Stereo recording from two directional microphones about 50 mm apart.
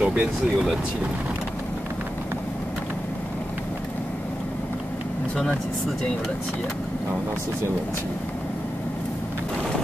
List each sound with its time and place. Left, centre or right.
0.0 s speech: right